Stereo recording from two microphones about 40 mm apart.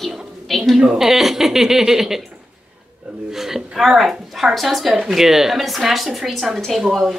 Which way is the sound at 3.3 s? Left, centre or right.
Centre.